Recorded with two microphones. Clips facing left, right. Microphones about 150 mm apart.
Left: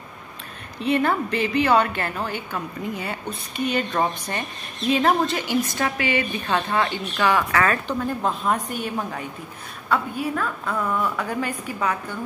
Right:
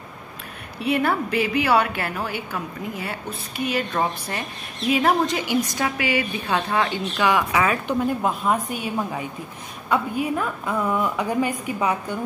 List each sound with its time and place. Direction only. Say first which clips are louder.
0.7 s a woman's voice: left 1 dB; 10° right (ahead or behind)
10.3 s a woman's voice: right 2 dB; 15° right (ahead or behind)